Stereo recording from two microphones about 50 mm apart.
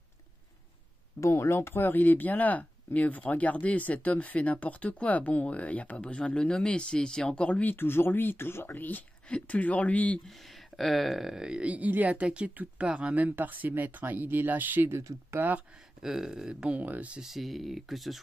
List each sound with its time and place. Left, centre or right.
1.2 s speech: left
1.7 s speech: left
7.6 s speech: left
8.7 s speech: left
10.8 s speech: centre
11.4 s speech: right
12.4 s speech: right
12.8 s speech: right
14.9 s speech: right
16.0 s speech: centre
16.8 s speech: right
17.2 s speech: centre